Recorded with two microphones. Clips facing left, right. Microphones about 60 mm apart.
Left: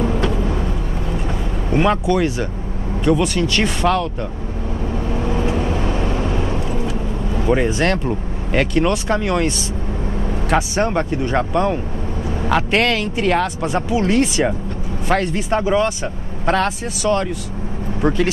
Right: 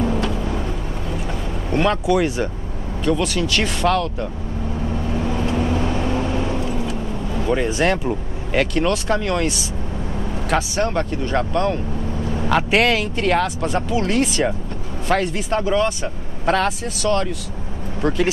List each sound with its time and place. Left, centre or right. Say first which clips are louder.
0.2 s vehicle: left 3 dB; centre
1.7 s vehicle: left 2 dB; centre
2.2 s speech: left 1 dB; right
3.2 s speech: left 2 dB; centre
5.2 s vehicle: left 1 dB; centre
7.7 s speech: even; centre
8.5 s speech: left 2 dB; centre
10.5 s speech: left 2 dB; centre
12.4 s speech: even; centre